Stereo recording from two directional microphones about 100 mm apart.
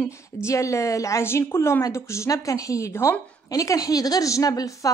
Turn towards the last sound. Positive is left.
turn(degrees=35)  # may be behind; listen again after turning